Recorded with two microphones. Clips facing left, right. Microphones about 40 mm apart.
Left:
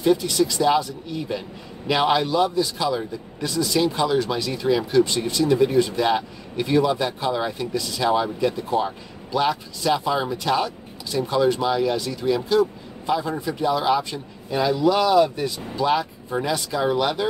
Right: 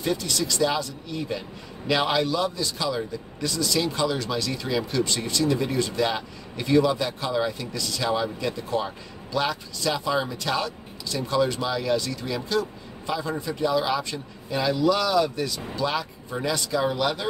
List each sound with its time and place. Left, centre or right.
0.0 s speech: centre